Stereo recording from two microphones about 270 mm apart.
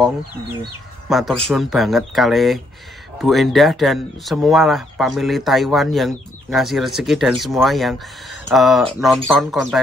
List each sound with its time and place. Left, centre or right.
0.6 s speech: centre